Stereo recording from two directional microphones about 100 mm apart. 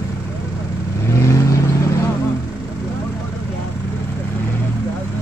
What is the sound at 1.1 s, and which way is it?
Vehicle, 30° left (ahead or behind).